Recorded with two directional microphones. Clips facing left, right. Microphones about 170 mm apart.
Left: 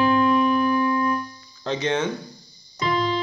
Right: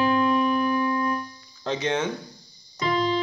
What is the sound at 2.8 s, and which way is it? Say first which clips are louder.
Keyboard: left 1 dB; 45° right (ahead or behind).